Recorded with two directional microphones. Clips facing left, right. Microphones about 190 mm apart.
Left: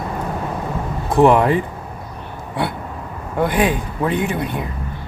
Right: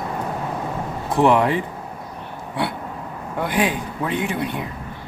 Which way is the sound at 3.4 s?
45° left (ahead or behind).